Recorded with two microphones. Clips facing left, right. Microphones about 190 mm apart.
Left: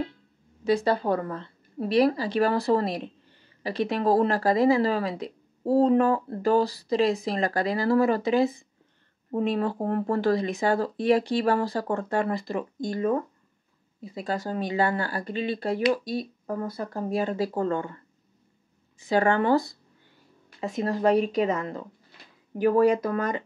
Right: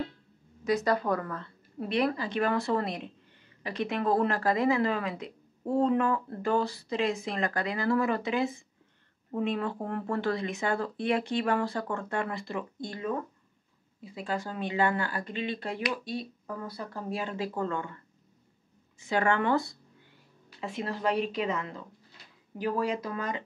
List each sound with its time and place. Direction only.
0.7 s a woman's voice: 30° left (ahead or behind)
14.1 s a woman's voice: 40° left (ahead or behind)
18.9 s a woman's voice: 35° left (ahead or behind); by 23.4 s 50° left (ahead or behind)